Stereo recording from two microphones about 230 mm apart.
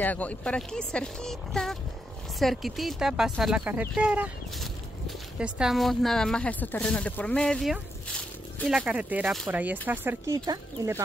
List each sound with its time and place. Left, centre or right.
0.0 s speech: centre